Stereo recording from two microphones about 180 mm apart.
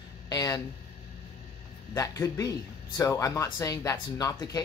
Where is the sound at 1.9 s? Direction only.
15° left (ahead or behind).